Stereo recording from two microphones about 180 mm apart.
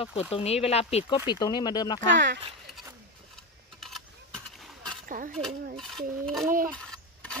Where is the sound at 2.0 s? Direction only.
85° right.